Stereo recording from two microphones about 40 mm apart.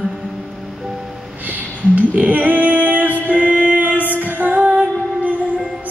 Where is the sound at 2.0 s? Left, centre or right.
Right.